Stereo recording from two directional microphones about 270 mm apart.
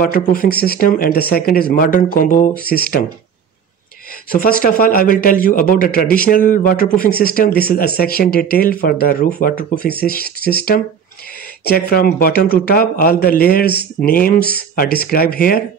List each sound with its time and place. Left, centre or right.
0.0 s speech: left
4.3 s speech: left